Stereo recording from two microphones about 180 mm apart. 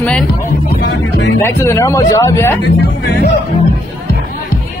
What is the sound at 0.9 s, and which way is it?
Music, 80° left.